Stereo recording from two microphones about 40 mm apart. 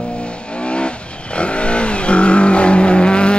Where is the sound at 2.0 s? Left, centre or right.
Left.